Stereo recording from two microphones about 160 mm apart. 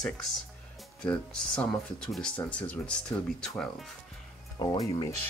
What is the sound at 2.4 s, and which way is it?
Speech, 10° left (ahead or behind).